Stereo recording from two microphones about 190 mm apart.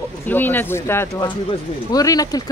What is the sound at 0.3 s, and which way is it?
Speech, 10° left (ahead or behind).